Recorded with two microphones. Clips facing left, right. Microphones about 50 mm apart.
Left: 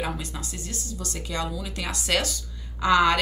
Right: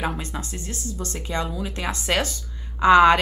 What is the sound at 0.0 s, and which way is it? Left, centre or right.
Speech, right.